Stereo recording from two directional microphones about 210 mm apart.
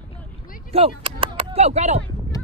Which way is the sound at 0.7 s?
25° right (ahead or behind).